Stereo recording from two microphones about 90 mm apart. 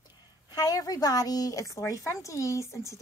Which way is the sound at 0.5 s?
45° left (ahead or behind).